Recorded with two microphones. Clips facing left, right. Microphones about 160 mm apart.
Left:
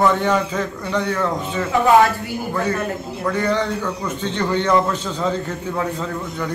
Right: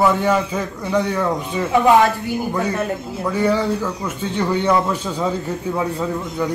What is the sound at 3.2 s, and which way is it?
A man's voice, 10° right (ahead or behind).